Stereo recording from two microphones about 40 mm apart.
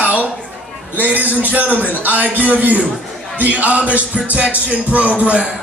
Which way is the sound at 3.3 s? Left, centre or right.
Right.